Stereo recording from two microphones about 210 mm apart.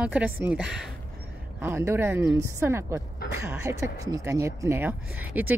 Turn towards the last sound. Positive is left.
turn(degrees=-10)  # may be behind; listen again after turning